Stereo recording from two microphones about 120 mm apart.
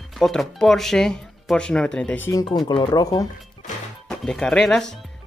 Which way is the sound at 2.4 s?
40° left (ahead or behind).